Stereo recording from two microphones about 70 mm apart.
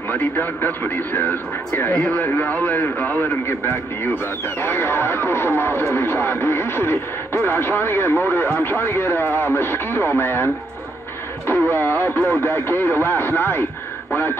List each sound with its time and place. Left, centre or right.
0.1 s speech: left